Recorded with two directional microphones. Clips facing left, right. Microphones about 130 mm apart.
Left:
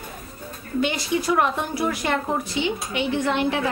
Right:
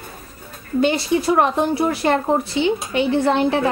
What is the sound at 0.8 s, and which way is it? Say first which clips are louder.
Speech: right 6 dB; 30° right (ahead or behind).